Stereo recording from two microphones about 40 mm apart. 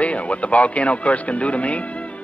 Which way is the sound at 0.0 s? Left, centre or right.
Left.